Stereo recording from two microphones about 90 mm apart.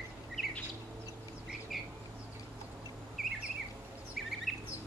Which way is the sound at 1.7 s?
Centre (ahead or behind).